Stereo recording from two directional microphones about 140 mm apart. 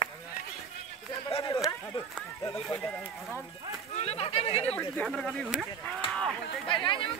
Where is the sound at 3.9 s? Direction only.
50° left (ahead or behind).